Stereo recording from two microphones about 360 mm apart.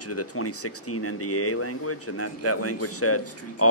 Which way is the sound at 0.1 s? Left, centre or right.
Left.